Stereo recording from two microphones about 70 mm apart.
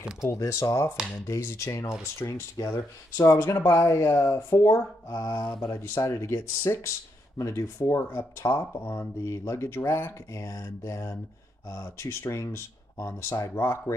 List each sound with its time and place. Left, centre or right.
0.2 s speech: left
5.1 s mantra: left
5.8 s speech: left